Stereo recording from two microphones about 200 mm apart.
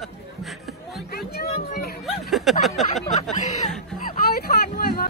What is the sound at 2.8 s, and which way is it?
Speech, 35° left (ahead or behind).